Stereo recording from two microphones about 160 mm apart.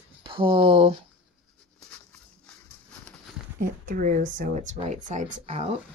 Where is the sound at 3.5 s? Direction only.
60° right (ahead or behind); by 5.8 s 40° right (ahead or behind).